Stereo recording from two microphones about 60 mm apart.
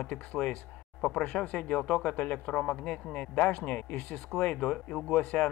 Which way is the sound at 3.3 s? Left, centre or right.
Left.